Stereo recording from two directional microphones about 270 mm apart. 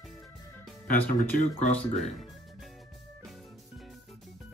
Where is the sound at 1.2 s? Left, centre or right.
Left.